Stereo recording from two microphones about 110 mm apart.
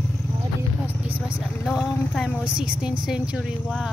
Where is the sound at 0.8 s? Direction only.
10° right (ahead or behind).